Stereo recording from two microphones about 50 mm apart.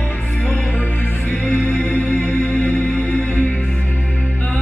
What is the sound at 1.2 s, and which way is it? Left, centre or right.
Music, left.